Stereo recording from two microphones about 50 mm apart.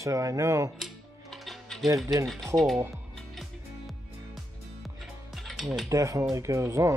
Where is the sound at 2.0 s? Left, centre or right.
Centre.